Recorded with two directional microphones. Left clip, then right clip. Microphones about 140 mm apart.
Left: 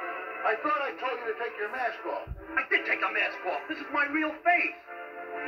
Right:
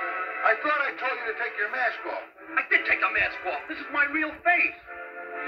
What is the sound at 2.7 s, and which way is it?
A man's voice, 45° right (ahead or behind).